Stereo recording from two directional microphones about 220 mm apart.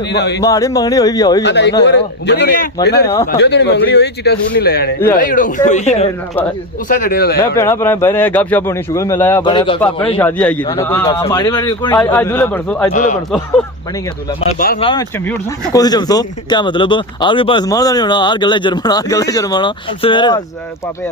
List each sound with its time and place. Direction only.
0.1 s a man's voice: 50° left (ahead or behind)
0.4 s a man's voice: 15° left (ahead or behind)
1.4 s a man's voice: 50° left (ahead or behind); by 6.0 s 30° left (ahead or behind)
6.9 s a man's voice: 40° left (ahead or behind)
7.3 s a man's voice: 15° left (ahead or behind)
10.1 s a man's voice: 5° left (ahead or behind)
14.8 s speech: 20° left (ahead or behind)